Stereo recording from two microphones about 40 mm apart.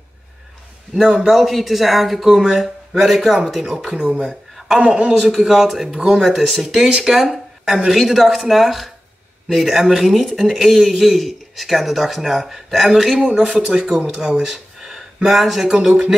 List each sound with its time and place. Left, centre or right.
1.0 s speech: centre; by 4.3 s right
4.3 s a sound: centre
4.8 s speech: right
13.2 s speech: right
14.5 s a sound: centre
15.2 s speech: centre
15.7 s speech: centre